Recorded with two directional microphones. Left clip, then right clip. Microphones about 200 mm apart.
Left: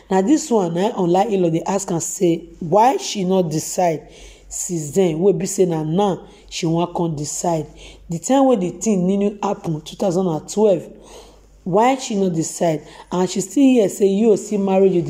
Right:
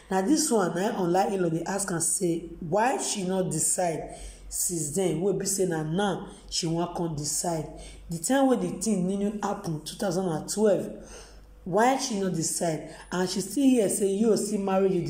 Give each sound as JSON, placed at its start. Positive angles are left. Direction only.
{"t": 0.4, "sound": "a woman's voice", "side_deg": 20}